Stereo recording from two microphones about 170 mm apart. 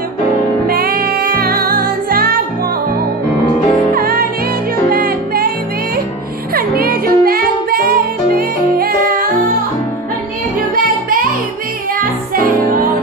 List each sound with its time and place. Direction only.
0.7 s music: 60° right (ahead or behind)
3.9 s music: 60° right (ahead or behind)
6.5 s music: 60° right (ahead or behind)
12.0 s music: 55° right (ahead or behind)